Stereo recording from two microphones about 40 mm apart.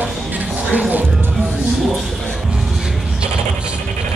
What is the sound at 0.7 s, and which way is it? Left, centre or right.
Speech, right.